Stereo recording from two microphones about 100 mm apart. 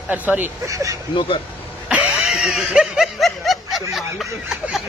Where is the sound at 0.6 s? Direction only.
30° right (ahead or behind).